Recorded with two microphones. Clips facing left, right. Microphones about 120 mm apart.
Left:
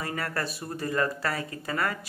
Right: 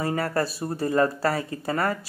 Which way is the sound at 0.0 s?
30° right (ahead or behind).